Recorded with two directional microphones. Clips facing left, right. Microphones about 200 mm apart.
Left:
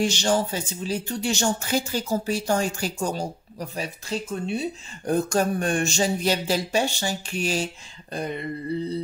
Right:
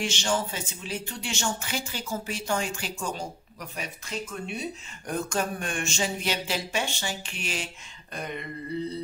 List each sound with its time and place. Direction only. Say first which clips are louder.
0.0 s speech: left 6 dB; 40° left (ahead or behind)